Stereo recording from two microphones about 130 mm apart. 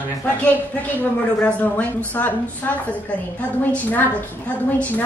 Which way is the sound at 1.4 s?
10° left (ahead or behind).